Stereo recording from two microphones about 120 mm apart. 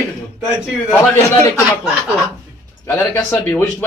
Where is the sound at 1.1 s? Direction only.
25° left (ahead or behind).